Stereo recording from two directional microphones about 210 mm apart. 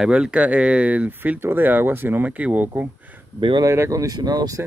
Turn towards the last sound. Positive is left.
turn(degrees=-15)  # may be behind; listen again after turning